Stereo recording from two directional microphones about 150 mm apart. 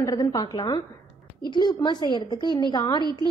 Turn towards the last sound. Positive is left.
turn(degrees=25)  # may be behind; listen again after turning